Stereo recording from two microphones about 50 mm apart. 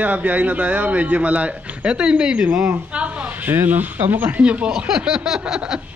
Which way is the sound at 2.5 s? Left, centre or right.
Right.